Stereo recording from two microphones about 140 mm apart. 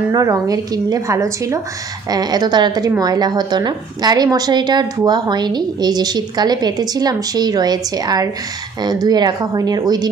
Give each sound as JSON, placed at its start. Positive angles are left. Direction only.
{"t": 0.1, "sound": "a woman's voice", "side_deg": -25}